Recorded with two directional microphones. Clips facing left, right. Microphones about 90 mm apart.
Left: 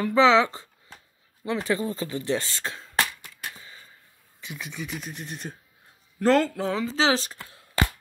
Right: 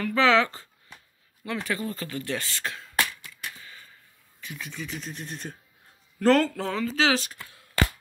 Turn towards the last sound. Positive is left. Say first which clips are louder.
# left 1 dB
turn(degrees=35)  # may be behind; listen again after turning